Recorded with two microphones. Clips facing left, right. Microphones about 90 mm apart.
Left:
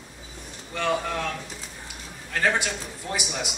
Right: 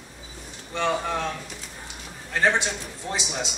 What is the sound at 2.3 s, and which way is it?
A man's voice, 20° right (ahead or behind).